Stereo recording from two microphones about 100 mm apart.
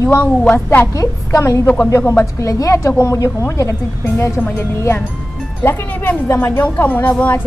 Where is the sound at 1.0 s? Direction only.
30° left (ahead or behind).